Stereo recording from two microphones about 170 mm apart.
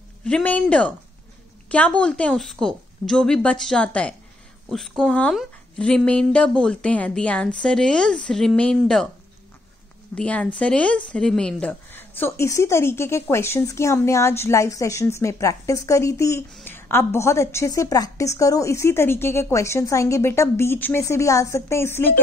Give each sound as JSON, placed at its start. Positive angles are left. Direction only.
{"t": 0.2, "sound": "a woman's voice", "side_deg": 5}
{"t": 10.1, "sound": "speech", "side_deg": 5}
{"t": 16.4, "sound": "speech", "side_deg": 5}